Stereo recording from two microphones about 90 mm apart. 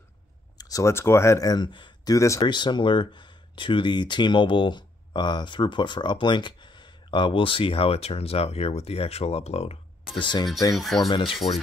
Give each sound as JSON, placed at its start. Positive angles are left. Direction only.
{"t": 0.6, "sound": "a sound", "side_deg": 40}
{"t": 0.9, "sound": "speech", "side_deg": 30}
{"t": 1.4, "sound": "speech", "side_deg": 50}
{"t": 2.0, "sound": "speech", "side_deg": 35}
{"t": 2.4, "sound": "speech", "side_deg": 60}
{"t": 10.1, "sound": "speech", "side_deg": 60}
{"t": 10.7, "sound": "speech", "side_deg": 0}